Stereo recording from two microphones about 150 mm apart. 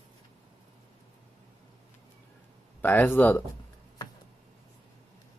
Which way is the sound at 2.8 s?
15° left (ahead or behind).